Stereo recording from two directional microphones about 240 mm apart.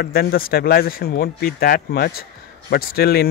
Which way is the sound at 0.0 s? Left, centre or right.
Left.